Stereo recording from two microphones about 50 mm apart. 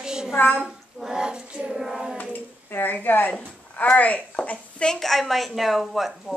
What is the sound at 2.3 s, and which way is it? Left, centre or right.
Speech, left.